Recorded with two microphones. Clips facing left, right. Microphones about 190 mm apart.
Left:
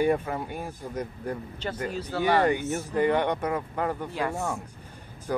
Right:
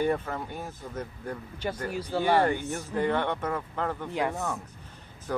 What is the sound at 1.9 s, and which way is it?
Speech, 10° right (ahead or behind).